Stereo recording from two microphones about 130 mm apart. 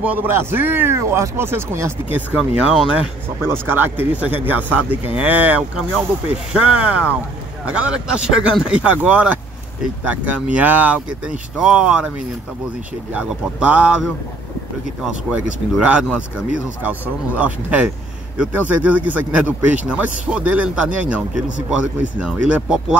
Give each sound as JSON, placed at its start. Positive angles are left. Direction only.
{"t": 0.0, "sound": "a man's voice", "side_deg": -15}
{"t": 3.6, "sound": "a man's voice", "side_deg": -15}
{"t": 13.1, "sound": "a man's voice", "side_deg": -10}
{"t": 15.3, "sound": "a man's voice", "side_deg": -10}